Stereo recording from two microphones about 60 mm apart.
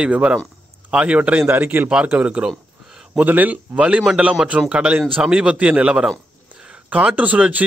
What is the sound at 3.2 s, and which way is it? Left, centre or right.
A man's voice, right.